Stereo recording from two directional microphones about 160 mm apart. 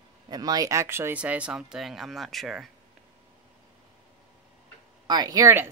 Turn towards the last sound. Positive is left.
turn(degrees=-20)  # may be behind; listen again after turning